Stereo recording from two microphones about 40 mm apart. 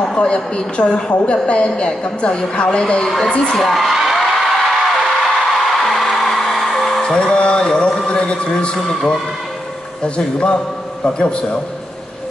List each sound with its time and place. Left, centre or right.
0.0 s a woman's voice: left
3.5 s speech: centre
4.2 s music: centre
7.0 s a sound: centre
7.3 s carnatic music: left
8.1 s a woman's voice: left
8.7 s speech: centre
10.0 s a woman's voice: left